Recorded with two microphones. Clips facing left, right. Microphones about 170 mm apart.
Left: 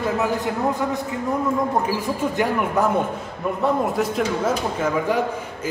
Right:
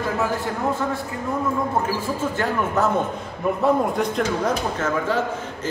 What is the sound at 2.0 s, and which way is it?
A man's voice, 15° left (ahead or behind).